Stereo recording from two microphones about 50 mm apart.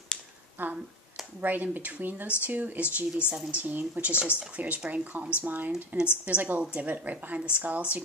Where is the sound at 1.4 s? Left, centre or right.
Right.